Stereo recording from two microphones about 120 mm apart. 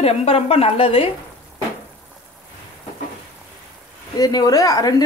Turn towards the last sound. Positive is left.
turn(degrees=30)  # may be behind; listen again after turning